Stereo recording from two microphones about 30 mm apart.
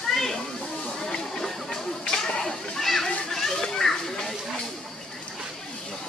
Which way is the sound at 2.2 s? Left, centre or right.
Centre.